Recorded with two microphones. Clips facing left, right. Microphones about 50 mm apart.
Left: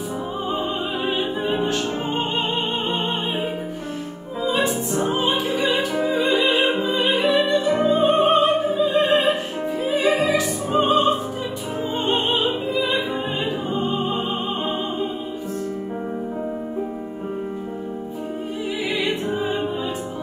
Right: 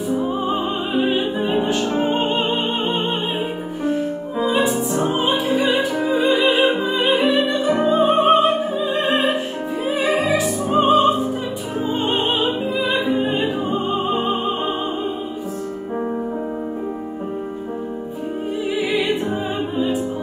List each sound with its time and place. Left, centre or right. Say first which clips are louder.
0.9 s music: right 7 dB; centre
2.0 s music: right 5 dB; right
4.9 s opera: right 2 dB; right
5.9 s music: right 2 dB; centre